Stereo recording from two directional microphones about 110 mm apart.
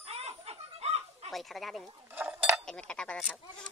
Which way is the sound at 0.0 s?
70° right (ahead or behind).